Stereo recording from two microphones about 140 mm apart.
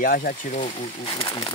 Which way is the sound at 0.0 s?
90° left.